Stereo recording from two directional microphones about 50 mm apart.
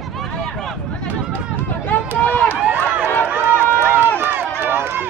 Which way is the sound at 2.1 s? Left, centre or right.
Left.